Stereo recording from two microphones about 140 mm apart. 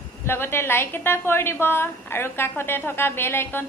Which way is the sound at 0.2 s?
15° left (ahead or behind).